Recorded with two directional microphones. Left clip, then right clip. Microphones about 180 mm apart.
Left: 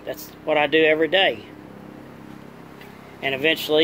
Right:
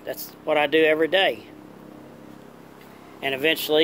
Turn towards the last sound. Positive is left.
turn(degrees=-15)  # may be behind; listen again after turning